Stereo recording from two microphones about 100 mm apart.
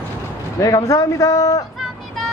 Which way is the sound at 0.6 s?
35° left (ahead or behind).